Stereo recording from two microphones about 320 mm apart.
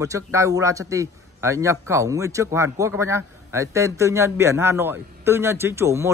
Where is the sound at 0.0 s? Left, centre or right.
Centre.